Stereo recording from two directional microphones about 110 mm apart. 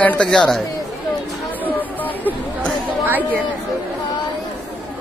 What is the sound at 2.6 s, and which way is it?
Chatter, 15° right (ahead or behind).